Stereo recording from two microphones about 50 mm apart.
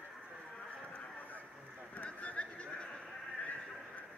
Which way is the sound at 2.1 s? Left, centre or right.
Left.